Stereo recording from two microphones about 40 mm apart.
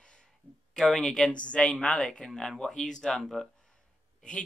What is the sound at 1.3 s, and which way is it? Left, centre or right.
Speech, left.